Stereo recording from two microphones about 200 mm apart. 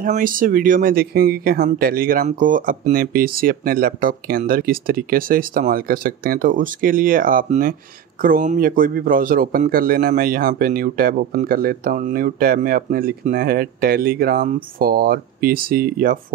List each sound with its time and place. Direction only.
0.0 s a man's voice: 45° right (ahead or behind)